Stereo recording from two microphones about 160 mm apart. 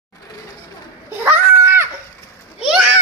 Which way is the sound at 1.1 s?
15° right (ahead or behind).